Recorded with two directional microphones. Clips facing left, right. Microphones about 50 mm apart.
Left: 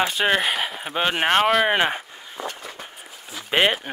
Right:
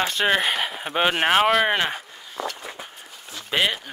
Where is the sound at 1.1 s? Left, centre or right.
Centre.